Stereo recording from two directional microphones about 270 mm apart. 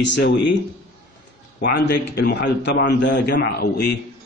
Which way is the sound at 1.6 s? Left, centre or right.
Left.